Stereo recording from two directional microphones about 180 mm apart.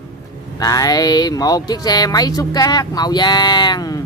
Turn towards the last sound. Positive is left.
turn(degrees=20)  # may be behind; listen again after turning